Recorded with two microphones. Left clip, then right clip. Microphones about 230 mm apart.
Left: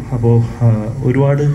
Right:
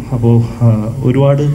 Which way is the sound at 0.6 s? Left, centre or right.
Right.